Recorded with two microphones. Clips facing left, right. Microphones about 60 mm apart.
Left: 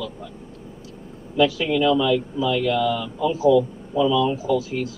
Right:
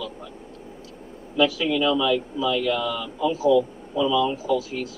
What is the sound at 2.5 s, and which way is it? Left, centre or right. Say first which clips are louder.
Speech: left 3 dB; left.